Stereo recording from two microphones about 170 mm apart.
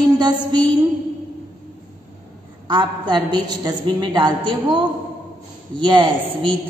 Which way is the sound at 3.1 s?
25° right (ahead or behind).